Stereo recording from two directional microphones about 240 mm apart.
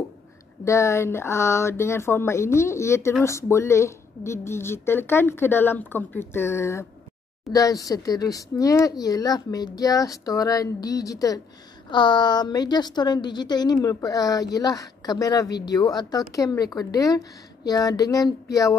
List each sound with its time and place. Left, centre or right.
0.7 s speech: centre